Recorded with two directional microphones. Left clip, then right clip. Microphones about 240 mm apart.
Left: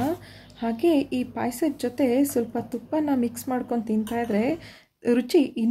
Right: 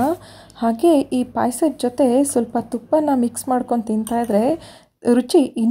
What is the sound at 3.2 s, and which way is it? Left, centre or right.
Speech, centre.